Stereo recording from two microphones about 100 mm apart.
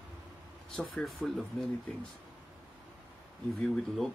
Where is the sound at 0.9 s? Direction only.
Centre (ahead or behind).